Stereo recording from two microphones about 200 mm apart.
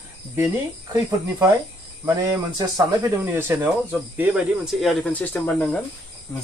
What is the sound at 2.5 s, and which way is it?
Speech, 15° right (ahead or behind).